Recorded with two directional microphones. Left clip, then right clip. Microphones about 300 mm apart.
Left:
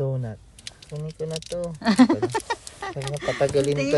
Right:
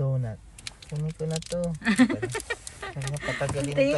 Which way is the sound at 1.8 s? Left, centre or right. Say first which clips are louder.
Left 6 dB; centre.